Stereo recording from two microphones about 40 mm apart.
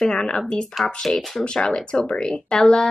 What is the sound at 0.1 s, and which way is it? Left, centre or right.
Speech, left.